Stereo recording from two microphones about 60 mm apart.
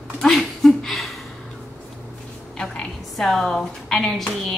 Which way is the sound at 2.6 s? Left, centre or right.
Centre.